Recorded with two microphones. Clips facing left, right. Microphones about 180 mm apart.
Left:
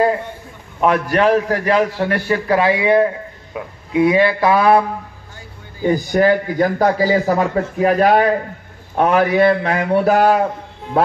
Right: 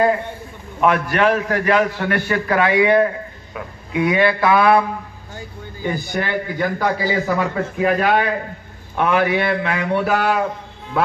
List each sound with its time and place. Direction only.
0.7 s a man's voice: 35° left (ahead or behind)
5.9 s a man's voice: 40° left (ahead or behind)